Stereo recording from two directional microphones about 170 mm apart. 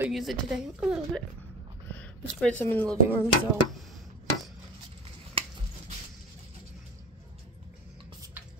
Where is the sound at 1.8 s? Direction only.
10° left (ahead or behind).